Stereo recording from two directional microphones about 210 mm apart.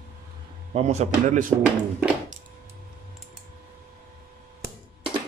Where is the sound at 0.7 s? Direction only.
30° right (ahead or behind).